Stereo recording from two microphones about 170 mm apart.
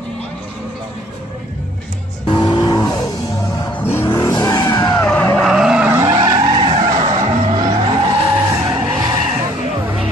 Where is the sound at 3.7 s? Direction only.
15° left (ahead or behind).